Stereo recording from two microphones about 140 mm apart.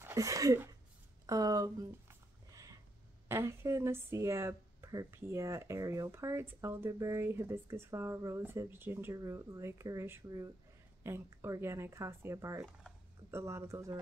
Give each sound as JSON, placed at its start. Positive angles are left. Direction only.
{"t": 0.0, "sound": "speech", "side_deg": -25}
{"t": 1.2, "sound": "a sound", "side_deg": -25}
{"t": 3.3, "sound": "speech", "side_deg": -20}